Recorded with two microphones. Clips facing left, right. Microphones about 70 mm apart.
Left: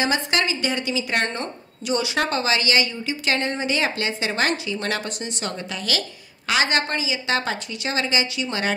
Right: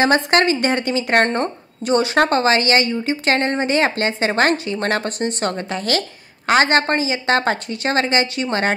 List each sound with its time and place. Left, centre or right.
0.0 s a woman's voice: right